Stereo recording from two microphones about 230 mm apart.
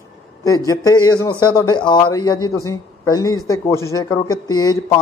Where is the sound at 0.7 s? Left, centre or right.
Centre.